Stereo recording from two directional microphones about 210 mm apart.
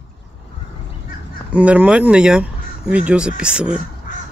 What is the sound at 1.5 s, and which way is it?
Speech, 5° right (ahead or behind).